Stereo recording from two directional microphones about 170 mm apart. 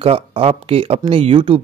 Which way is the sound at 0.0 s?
35° right (ahead or behind).